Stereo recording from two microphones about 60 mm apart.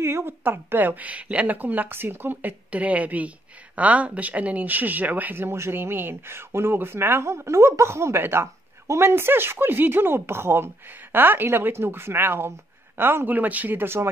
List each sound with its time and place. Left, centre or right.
0.0 s speech: right
2.7 s a woman's voice: right